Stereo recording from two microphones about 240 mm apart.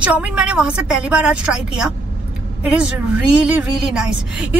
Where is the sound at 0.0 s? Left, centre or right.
Centre.